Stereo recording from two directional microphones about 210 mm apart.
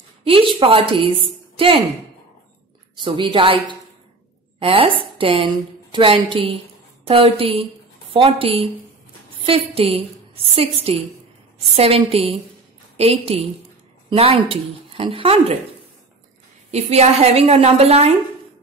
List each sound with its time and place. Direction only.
0.2 s a woman's voice: 25° right (ahead or behind)
3.0 s a woman's voice: 25° right (ahead or behind)
16.7 s a woman's voice: 30° right (ahead or behind)